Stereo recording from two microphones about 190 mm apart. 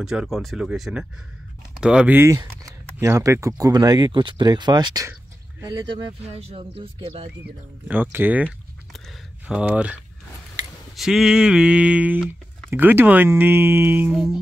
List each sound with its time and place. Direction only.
0.0 s a sound: centre (ahead or behind)
1.8 s speech: 5° right (ahead or behind); by 5.1 s 20° right (ahead or behind)
7.9 s speech: 10° right (ahead or behind)
9.5 s speech: 5° right (ahead or behind)
11.0 s a sound: 5° right (ahead or behind)
12.3 s speech: 10° right (ahead or behind)